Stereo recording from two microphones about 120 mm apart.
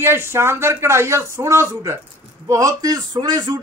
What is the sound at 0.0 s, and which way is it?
A man's voice, 20° right (ahead or behind).